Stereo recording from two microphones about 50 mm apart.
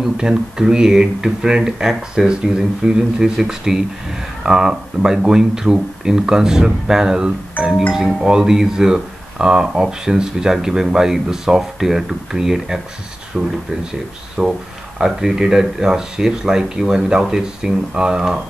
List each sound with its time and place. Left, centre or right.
0.0 s speech: centre
13.3 s speech: centre